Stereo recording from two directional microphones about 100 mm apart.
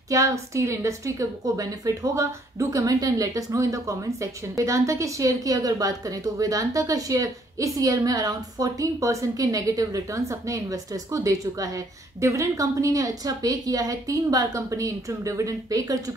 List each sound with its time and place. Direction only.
0.1 s a woman's voice: 30° right (ahead or behind)